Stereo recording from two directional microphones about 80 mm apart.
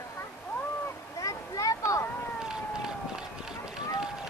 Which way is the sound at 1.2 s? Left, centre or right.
Left.